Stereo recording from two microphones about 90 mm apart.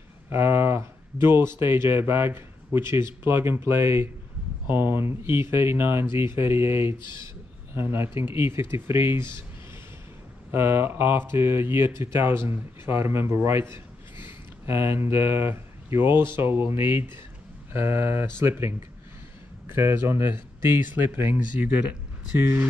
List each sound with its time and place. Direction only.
0.3 s speech: 25° right (ahead or behind)
10.5 s speech: 25° right (ahead or behind)